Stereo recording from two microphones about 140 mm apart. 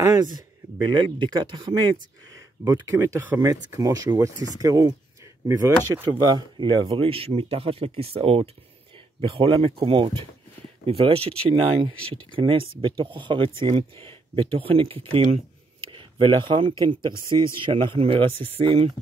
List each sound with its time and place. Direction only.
0.0 s speech: 25° right (ahead or behind); by 11.3 s 40° right (ahead or behind)
11.9 s speech: 10° left (ahead or behind)
12.4 s speech: 35° right (ahead or behind)